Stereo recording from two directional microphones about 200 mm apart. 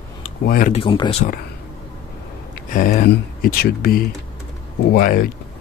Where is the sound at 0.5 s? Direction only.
40° left (ahead or behind).